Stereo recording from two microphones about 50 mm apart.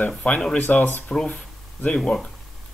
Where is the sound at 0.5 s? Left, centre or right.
Left.